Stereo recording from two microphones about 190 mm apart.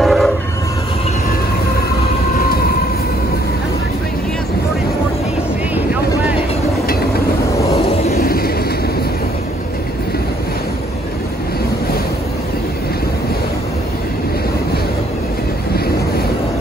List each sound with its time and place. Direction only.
0.0 s train: centre (ahead or behind)
2.3 s train: 50° left (ahead or behind)
8.1 s vehicle: 55° left (ahead or behind)